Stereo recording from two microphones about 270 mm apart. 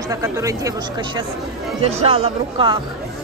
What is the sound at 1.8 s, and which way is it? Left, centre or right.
Speech, right.